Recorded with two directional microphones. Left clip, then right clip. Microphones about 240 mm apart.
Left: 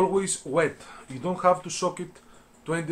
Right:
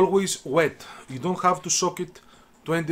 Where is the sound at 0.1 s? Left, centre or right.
Right.